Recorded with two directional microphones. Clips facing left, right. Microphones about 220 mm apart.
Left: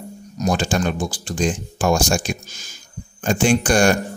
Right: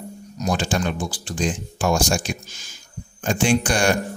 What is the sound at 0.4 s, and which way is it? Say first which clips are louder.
A man's voice: left 3 dB; 45° left (ahead or behind).